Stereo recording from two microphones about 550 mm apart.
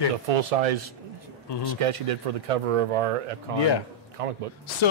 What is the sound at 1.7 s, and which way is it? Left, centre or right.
Speech, right.